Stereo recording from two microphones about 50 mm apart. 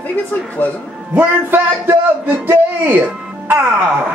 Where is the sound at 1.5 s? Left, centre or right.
Right.